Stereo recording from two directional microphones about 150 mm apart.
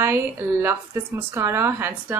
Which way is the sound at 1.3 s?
20° right (ahead or behind).